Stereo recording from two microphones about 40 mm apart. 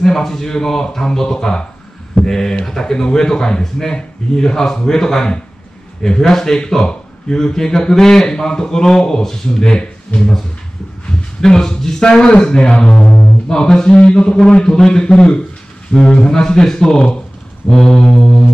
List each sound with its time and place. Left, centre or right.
0.0 s speech: centre
6.2 s speech: centre
6.8 s a sound: left
7.3 s speech: centre
11.4 s speech: centre
13.0 s speech: left
13.5 s a man's voice: centre